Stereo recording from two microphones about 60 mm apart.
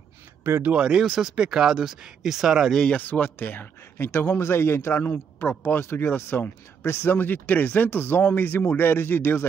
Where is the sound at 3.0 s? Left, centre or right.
Left.